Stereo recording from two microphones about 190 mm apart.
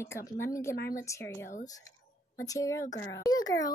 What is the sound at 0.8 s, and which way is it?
Speech, 55° left (ahead or behind).